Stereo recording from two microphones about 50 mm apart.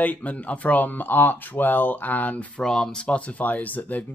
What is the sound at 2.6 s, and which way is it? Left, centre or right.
Speech, centre.